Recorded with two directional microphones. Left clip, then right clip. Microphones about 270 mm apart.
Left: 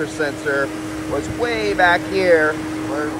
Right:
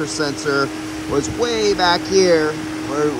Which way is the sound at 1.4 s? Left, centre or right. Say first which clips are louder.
Left 1 dB; right.